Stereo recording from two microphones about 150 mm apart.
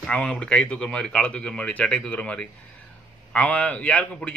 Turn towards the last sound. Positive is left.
turn(degrees=10)  # may be behind; listen again after turning